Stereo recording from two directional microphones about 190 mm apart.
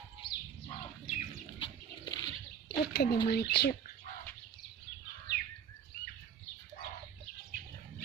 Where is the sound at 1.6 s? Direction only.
20° left (ahead or behind).